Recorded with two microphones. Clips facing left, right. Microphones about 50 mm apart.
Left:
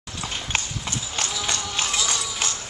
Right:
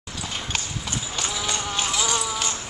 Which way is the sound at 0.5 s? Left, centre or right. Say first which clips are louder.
Left 2 dB; left.